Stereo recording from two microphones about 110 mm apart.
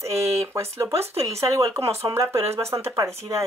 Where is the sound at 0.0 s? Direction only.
25° right (ahead or behind).